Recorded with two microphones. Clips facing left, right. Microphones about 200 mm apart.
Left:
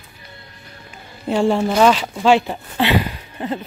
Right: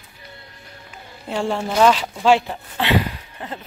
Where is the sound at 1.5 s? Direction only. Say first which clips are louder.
Even; 5° left (ahead or behind).